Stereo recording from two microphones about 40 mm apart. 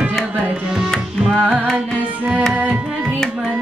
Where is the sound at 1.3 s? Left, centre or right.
Left.